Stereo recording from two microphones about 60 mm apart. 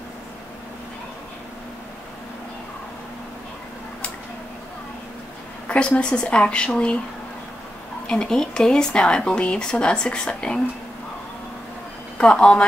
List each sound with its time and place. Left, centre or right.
5.7 s speech: centre
8.1 s speech: centre
12.2 s speech: centre